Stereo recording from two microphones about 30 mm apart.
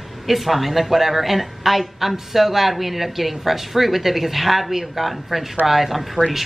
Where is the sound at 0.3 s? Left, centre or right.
Centre.